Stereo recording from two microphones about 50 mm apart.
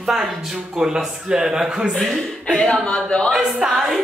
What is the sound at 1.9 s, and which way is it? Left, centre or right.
Speech, centre.